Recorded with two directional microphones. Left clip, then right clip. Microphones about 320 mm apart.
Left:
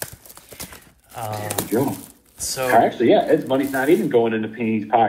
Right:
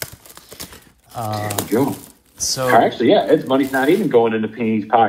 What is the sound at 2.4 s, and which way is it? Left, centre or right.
Speech, right.